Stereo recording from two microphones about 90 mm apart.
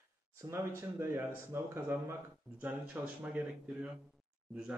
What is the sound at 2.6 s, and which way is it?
Speech, 20° right (ahead or behind).